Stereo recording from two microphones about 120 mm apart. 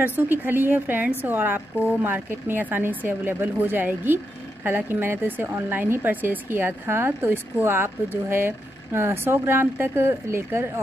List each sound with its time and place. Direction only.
0.0 s speech: 15° right (ahead or behind)